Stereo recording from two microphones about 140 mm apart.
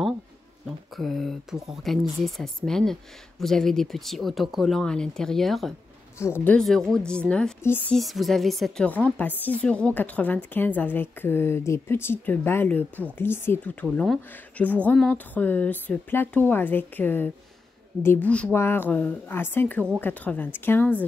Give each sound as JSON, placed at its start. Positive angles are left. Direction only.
{"t": 0.9, "sound": "speech", "side_deg": 0}
{"t": 6.1, "sound": "a woman's voice", "side_deg": 15}
{"t": 8.0, "sound": "a woman's voice", "side_deg": 0}
{"t": 13.9, "sound": "speech", "side_deg": 0}
{"t": 14.3, "sound": "a woman's voice", "side_deg": 10}